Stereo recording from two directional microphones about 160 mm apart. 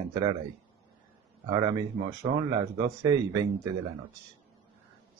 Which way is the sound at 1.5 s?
25° right (ahead or behind).